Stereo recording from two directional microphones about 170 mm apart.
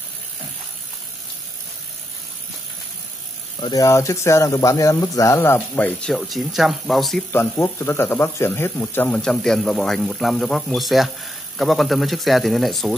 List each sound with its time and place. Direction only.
3.5 s speech: 25° left (ahead or behind); by 7.2 s centre (ahead or behind)
7.3 s speech: 15° left (ahead or behind)